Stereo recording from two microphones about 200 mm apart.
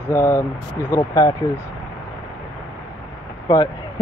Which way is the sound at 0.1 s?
15° left (ahead or behind).